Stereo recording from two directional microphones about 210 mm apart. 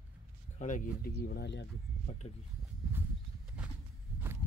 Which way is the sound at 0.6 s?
40° left (ahead or behind).